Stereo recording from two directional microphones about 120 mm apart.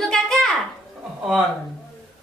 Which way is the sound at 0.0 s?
5° left (ahead or behind).